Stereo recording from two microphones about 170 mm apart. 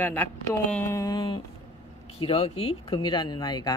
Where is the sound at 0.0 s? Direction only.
10° left (ahead or behind).